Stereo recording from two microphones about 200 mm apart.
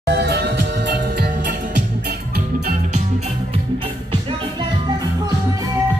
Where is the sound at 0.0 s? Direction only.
55° right (ahead or behind).